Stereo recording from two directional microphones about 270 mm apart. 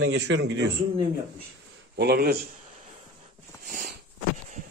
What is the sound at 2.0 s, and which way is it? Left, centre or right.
Speech, right.